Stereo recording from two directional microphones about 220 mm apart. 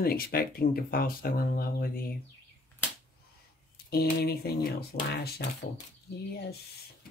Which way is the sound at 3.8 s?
45° left (ahead or behind).